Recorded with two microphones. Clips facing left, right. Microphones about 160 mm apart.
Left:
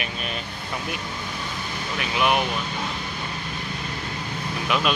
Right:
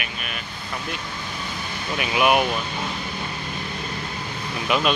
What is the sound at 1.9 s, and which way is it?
Speech, 10° right (ahead or behind).